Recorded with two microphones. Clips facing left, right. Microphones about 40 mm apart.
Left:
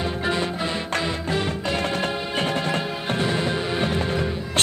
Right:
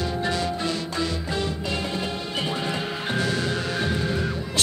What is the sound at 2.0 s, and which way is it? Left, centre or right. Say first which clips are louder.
Music: left 3 dB; left.